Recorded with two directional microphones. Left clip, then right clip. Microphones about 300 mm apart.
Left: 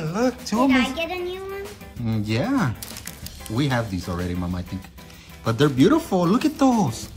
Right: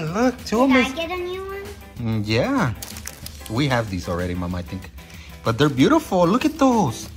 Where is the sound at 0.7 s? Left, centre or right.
Centre.